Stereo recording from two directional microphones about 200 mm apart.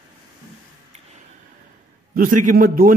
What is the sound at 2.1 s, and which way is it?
Speech, 45° right (ahead or behind).